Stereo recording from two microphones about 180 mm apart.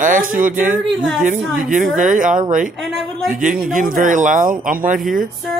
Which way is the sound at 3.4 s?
50° right (ahead or behind).